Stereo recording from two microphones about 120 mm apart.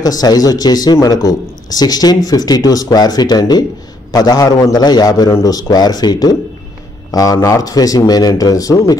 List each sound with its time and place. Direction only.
0.0 s speech: 30° left (ahead or behind)